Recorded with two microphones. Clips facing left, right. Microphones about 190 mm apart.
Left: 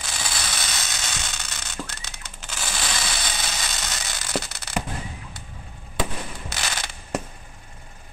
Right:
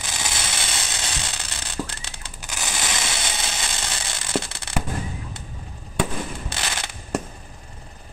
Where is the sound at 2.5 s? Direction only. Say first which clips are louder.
Right 1 dB; 20° right (ahead or behind).